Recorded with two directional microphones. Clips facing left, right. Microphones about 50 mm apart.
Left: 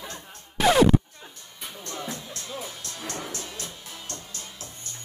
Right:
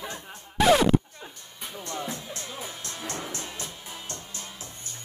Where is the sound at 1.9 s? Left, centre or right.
Centre.